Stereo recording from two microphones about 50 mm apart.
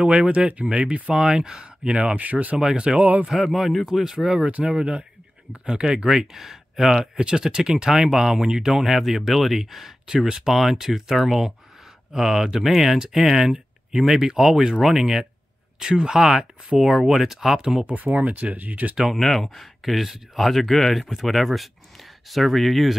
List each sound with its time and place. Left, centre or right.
0.0 s speech: right
1.2 s speech: centre; by 2.5 s right
2.5 s speech: centre
3.3 s speech: centre
4.5 s speech: right
4.7 s speech: centre
10.0 s speech: centre
15.8 s speech: centre
18.3 s speech: right
19.1 s speech: centre